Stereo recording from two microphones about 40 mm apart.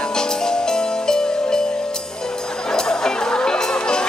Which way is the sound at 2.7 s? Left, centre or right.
Centre.